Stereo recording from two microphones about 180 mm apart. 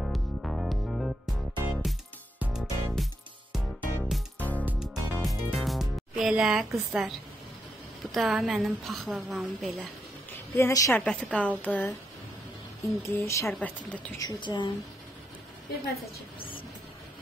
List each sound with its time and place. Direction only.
0.0 s music: centre (ahead or behind)
8.0 s a woman's voice: centre (ahead or behind)
10.5 s a woman's voice: 15° left (ahead or behind)
13.3 s a woman's voice: 10° left (ahead or behind)
14.1 s a woman's voice: 25° left (ahead or behind)